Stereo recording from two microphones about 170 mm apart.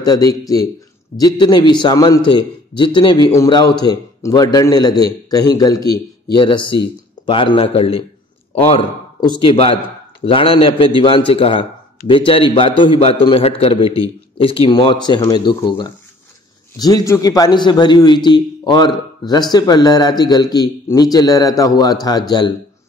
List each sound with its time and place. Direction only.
0.0 s a man's voice: 20° left (ahead or behind)
9.4 s a man's voice: 30° left (ahead or behind)